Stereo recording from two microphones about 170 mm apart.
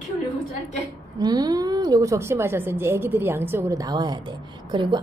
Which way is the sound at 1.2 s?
25° right (ahead or behind).